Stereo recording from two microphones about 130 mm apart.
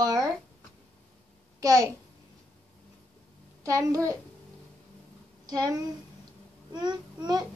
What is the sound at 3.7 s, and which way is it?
Speech, 25° right (ahead or behind).